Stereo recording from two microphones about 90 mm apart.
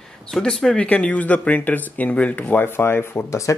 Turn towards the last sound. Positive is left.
turn(degrees=35)  # may be behind; listen again after turning